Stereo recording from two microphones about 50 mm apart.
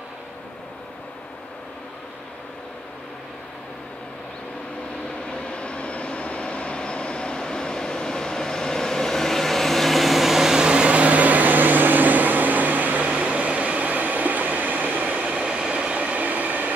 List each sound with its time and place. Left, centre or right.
5.3 s vehicle: left; by 15.4 s right
15.4 s train: centre; by 16.7 s right